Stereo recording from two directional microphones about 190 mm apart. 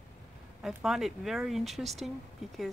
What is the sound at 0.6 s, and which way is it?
Speech, centre (ahead or behind).